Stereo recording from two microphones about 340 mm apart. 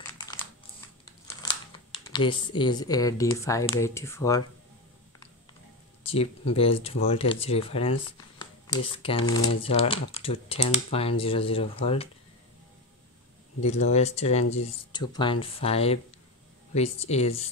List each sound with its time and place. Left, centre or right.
0.2 s computer keyboard: centre
1.2 s speech: centre
6.0 s speech: centre
13.6 s speech: centre